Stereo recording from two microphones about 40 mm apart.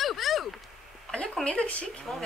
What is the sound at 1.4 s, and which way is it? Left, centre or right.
Speech, left.